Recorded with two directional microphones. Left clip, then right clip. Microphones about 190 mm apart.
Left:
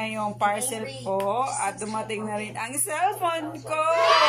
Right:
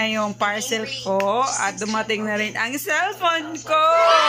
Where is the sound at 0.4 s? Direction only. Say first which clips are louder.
Right 3 dB; centre (ahead or behind).